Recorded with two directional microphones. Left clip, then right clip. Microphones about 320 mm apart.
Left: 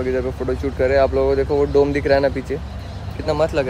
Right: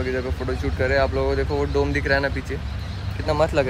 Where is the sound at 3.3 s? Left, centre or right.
Centre.